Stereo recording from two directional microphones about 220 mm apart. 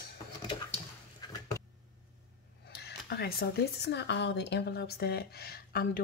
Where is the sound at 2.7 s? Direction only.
50° left (ahead or behind).